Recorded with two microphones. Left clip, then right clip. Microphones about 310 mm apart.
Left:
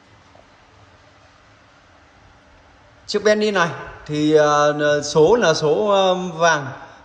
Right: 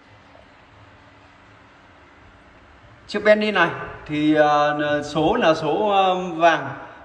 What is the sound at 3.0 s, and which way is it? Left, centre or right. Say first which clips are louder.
Speech: even; centre.